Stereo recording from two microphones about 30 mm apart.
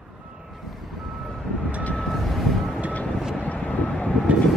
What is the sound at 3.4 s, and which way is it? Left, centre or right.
Vehicle, left.